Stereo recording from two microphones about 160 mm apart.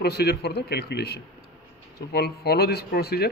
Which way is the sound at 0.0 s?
90° left.